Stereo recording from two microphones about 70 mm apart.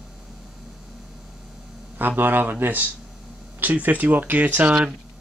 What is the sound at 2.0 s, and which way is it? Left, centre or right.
Speech, right.